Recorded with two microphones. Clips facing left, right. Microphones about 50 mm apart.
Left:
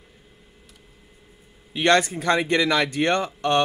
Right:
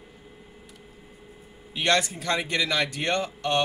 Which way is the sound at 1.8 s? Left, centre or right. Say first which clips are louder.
Left 5 dB; left.